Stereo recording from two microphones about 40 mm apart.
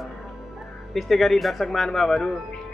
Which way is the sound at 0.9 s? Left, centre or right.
Centre.